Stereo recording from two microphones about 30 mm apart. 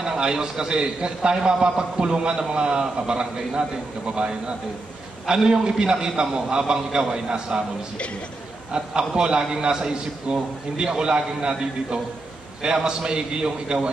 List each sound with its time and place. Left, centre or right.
0.0 s a man's voice: right
8.7 s a man's voice: right